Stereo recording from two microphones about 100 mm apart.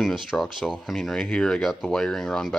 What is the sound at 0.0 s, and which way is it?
Speech, centre (ahead or behind).